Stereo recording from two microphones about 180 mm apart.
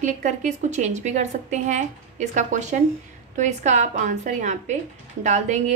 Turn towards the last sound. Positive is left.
turn(degrees=-40)  # may be behind; listen again after turning